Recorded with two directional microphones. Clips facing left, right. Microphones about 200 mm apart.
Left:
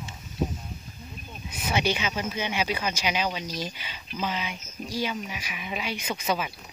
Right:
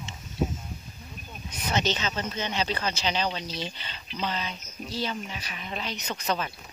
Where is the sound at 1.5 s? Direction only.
10° left (ahead or behind).